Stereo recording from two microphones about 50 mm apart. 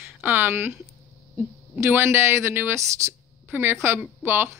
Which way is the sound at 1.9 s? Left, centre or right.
Right.